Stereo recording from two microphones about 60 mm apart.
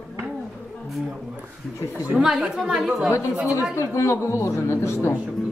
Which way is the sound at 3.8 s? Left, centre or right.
Left.